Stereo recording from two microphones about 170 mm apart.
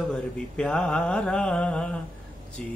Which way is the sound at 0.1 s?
5° left (ahead or behind).